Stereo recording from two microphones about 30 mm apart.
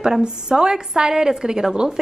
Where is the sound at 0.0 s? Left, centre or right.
Right.